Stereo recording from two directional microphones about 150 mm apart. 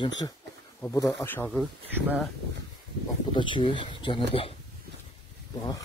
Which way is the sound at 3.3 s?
35° left (ahead or behind).